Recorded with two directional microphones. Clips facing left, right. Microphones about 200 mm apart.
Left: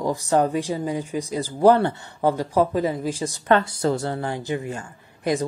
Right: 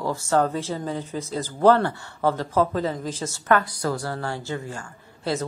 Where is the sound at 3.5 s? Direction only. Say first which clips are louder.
Left 3 dB; 25° left (ahead or behind).